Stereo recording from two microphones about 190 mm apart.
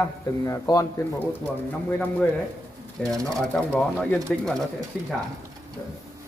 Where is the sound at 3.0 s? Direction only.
5° left (ahead or behind).